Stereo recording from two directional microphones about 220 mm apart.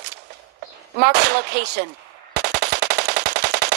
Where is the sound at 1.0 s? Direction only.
50° right (ahead or behind).